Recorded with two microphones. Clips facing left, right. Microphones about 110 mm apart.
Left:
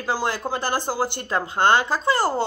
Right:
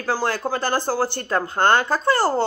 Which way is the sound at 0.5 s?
15° left (ahead or behind).